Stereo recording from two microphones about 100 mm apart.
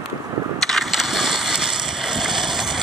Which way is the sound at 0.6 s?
Centre (ahead or behind).